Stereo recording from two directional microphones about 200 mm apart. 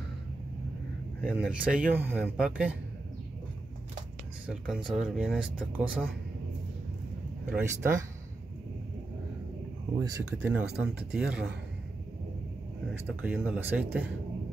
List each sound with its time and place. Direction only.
1.4 s speech: 5° right (ahead or behind)
4.5 s speech: 5° right (ahead or behind)
7.4 s speech: 10° right (ahead or behind)
9.9 s speech: 20° right (ahead or behind)
13.2 s speech: 10° right (ahead or behind)